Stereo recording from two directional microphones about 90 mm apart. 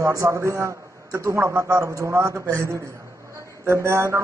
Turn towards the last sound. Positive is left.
turn(degrees=-30)  # may be behind; listen again after turning